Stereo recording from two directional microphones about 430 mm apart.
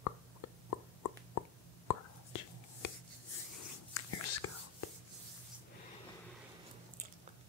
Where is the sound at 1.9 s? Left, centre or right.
Left.